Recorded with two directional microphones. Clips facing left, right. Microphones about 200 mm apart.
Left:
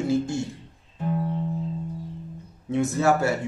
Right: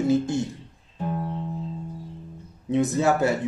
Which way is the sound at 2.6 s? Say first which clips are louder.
Right 1 dB; 20° right (ahead or behind).